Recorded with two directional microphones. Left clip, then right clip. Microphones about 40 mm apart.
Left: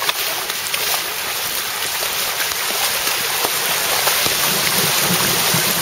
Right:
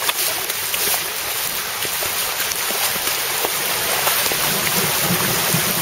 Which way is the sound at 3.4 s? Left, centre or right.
Centre.